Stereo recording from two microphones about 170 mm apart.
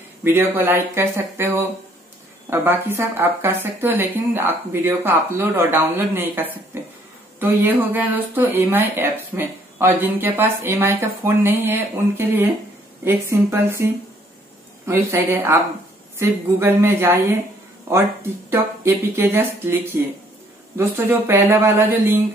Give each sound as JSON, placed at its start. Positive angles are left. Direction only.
{"t": 0.2, "sound": "speech", "side_deg": -10}
{"t": 14.9, "sound": "speech", "side_deg": -15}
{"t": 18.5, "sound": "speech", "side_deg": -15}